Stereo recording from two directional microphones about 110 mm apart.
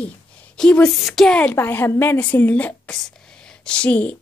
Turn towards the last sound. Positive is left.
turn(degrees=10)  # may be behind; listen again after turning